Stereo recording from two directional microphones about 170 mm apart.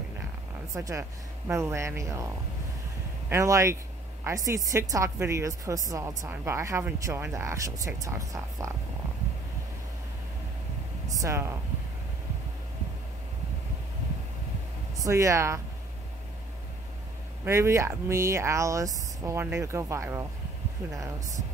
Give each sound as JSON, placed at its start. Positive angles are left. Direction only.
{"t": 0.7, "sound": "a woman's voice", "side_deg": -20}
{"t": 3.3, "sound": "a woman's voice", "side_deg": -20}
{"t": 11.1, "sound": "speech", "side_deg": -20}
{"t": 15.0, "sound": "speech", "side_deg": -20}
{"t": 17.5, "sound": "speech", "side_deg": -15}